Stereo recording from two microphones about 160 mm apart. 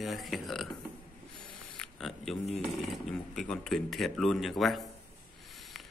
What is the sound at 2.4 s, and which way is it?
Speech, 40° left (ahead or behind).